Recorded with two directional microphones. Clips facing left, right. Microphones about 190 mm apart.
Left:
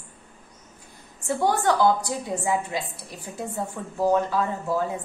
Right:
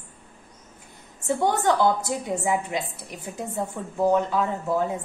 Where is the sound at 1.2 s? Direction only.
20° right (ahead or behind).